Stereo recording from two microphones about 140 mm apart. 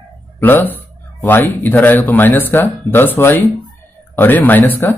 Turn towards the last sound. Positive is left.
turn(degrees=15)  # may be behind; listen again after turning